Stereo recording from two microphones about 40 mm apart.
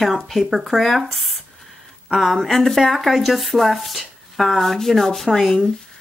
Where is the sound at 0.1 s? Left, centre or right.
Centre.